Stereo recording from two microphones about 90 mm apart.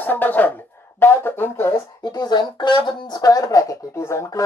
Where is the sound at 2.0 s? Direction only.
50° left (ahead or behind); by 4.4 s 30° left (ahead or behind).